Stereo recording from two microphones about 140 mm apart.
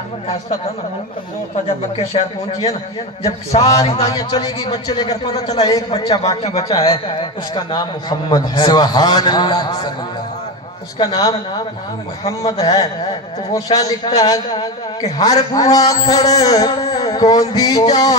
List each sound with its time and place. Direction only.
2.0 s a man's voice: 45° left (ahead or behind)
4.1 s a man's voice: 30° left (ahead or behind)
6.2 s a man's voice: 45° left (ahead or behind)
11.0 s a man's voice: 30° left (ahead or behind)